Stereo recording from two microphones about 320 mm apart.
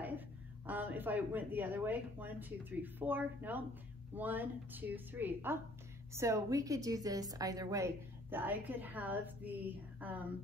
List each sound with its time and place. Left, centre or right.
0.7 s a woman's voice: centre